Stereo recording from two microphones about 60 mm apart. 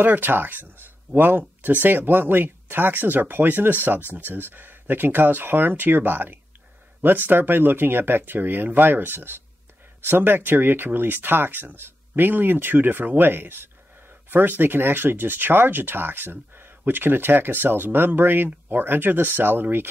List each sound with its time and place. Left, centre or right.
0.0 s speech: right